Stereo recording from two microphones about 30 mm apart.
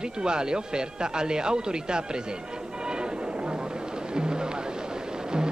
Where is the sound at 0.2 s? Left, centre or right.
Right.